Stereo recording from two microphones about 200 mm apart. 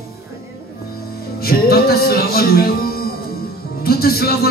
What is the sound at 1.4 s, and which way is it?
Speech, 50° left (ahead or behind).